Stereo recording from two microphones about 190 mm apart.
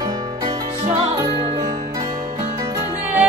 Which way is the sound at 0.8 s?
35° right (ahead or behind).